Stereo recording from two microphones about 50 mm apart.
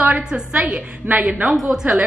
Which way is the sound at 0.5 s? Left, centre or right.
Right.